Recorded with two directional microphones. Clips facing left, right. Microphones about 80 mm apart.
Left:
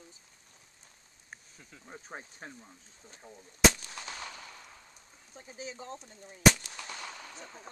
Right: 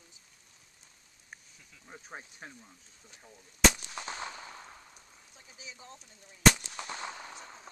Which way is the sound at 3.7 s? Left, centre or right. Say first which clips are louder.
Right 3 dB; right.